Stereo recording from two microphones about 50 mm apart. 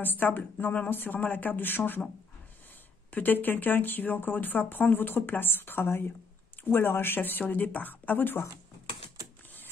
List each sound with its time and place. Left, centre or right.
0.0 s speech: left
3.1 s speech: left